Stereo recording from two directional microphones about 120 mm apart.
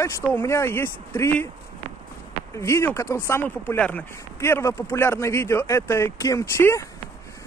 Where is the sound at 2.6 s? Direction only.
20° left (ahead or behind).